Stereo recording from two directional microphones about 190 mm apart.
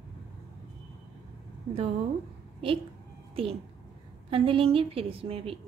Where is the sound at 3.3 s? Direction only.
30° right (ahead or behind).